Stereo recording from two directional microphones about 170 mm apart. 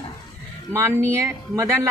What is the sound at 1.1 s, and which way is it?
Speech, 20° right (ahead or behind).